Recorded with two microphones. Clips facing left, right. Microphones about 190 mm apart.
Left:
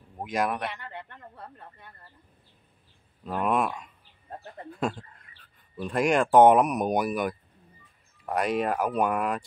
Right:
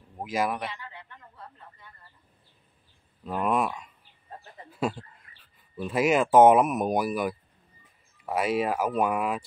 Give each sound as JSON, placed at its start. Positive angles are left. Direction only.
{"t": 0.2, "sound": "speech", "side_deg": 0}
{"t": 0.7, "sound": "a sound", "side_deg": 60}
{"t": 3.3, "sound": "speech", "side_deg": 0}